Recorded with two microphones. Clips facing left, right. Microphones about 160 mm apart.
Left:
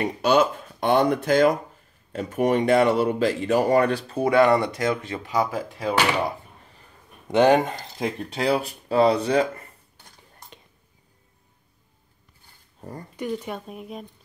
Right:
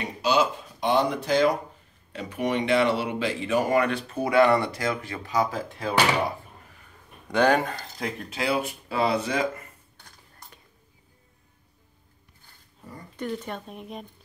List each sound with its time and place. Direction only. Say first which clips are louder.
0.0 s speech: left 4 dB; 55° left (ahead or behind); by 5.9 s 15° left (ahead or behind)
7.2 s speech: left 4 dB; 20° left (ahead or behind)
13.1 s speech: left 2 dB; 10° left (ahead or behind)